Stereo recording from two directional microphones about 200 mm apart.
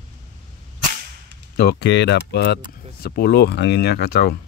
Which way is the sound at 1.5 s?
55° left (ahead or behind).